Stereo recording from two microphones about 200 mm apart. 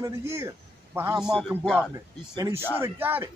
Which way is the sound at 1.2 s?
Centre (ahead or behind).